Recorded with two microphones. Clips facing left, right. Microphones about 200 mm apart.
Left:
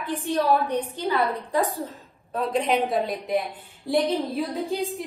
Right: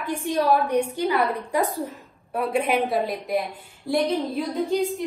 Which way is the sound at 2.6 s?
Centre (ahead or behind).